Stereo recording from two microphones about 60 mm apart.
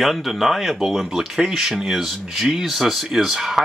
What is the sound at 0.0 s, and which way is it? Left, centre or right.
Speech, centre.